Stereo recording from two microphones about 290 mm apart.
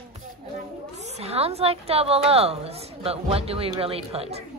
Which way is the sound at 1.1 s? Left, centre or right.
Right.